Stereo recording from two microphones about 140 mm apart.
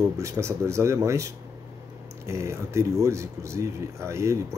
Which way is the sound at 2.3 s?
20° right (ahead or behind).